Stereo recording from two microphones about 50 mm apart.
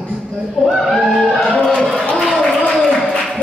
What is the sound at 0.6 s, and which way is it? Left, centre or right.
Speech, centre.